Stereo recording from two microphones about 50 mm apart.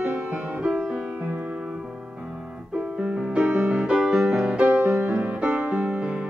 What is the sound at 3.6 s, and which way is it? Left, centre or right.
Music, centre.